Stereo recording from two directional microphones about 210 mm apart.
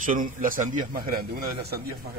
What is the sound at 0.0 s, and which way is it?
A man's voice, 40° right (ahead or behind).